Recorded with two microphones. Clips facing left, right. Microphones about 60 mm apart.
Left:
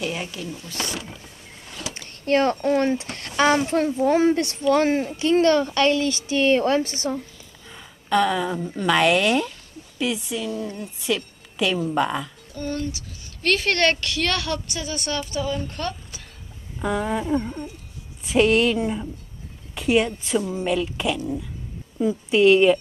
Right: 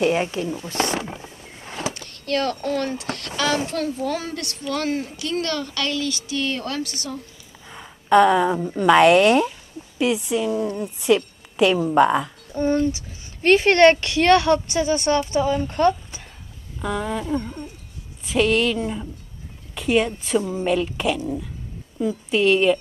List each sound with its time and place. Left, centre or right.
0.0 s speech: right
2.0 s a woman's voice: left
7.6 s a woman's voice: centre
16.8 s a woman's voice: centre
21.9 s a woman's voice: centre